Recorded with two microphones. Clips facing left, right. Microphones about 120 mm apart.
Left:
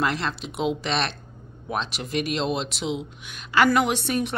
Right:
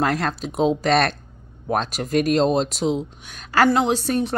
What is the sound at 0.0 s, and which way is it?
A woman's voice, 45° right (ahead or behind).